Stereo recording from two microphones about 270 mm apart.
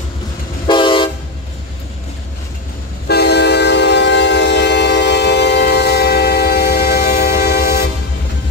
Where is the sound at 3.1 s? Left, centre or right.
Left.